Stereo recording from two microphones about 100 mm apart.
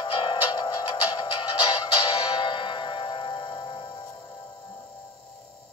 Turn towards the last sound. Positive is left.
turn(degrees=50)  # may be behind; listen again after turning